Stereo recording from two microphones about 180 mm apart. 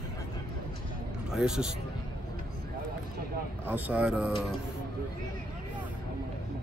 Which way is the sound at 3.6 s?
10° right (ahead or behind).